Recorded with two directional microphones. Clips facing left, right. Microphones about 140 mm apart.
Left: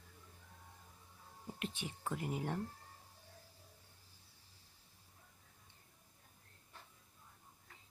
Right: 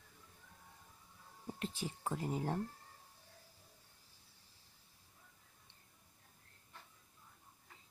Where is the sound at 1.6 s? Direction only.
35° right (ahead or behind).